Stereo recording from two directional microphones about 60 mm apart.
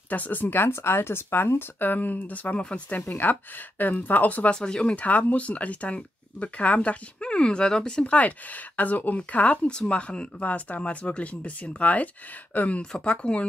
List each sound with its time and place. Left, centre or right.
0.1 s speech: left
4.6 s speech: centre